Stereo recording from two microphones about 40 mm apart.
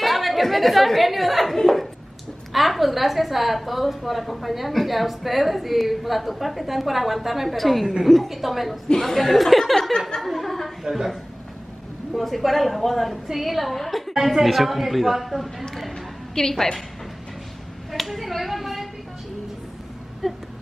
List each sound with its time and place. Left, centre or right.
0.0 s a woman's voice: centre
9.9 s chuckle: centre
10.2 s a sound: centre
10.8 s a man's voice: centre
14.1 s a woman's voice: centre
16.3 s a woman's voice: centre
17.9 s speech: centre
20.2 s a sound: centre